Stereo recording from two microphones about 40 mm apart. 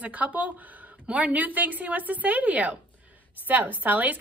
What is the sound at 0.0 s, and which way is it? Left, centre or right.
A woman's voice, right.